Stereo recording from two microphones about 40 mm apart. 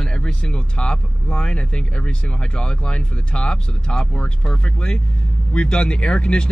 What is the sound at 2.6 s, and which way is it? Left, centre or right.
Speech, left.